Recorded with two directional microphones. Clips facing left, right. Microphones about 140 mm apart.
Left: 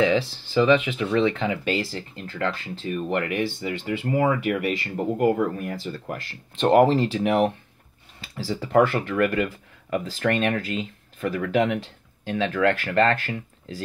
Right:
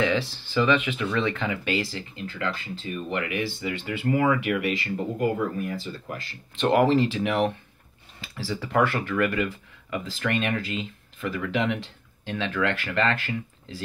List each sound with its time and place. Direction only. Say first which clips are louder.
0.0 s speech: left 4 dB; 35° left (ahead or behind); by 6.1 s 50° left (ahead or behind)
6.6 s speech: left 3 dB; 40° left (ahead or behind)